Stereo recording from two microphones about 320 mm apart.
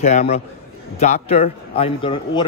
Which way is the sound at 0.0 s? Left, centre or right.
Left.